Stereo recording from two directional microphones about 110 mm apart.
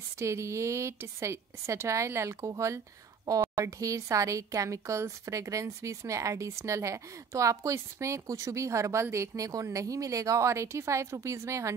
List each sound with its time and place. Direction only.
0.2 s speech: 25° right (ahead or behind)